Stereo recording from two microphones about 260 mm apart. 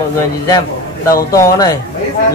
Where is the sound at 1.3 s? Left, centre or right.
Centre.